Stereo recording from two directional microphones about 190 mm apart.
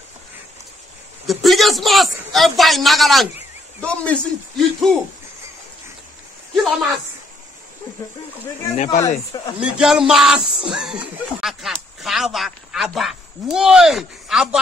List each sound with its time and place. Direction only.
1.2 s a man's voice: centre (ahead or behind)
6.5 s a man's voice: centre (ahead or behind)
8.7 s speech: 35° left (ahead or behind)
9.6 s speech: 5° right (ahead or behind)